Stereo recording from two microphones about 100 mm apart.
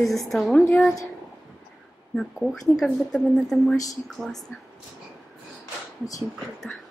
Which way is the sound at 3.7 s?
35° left (ahead or behind).